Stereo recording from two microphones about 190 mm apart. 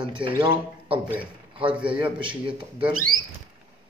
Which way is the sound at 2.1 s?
25° right (ahead or behind).